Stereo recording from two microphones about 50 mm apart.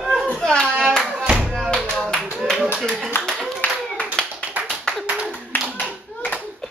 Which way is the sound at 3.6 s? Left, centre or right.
Left.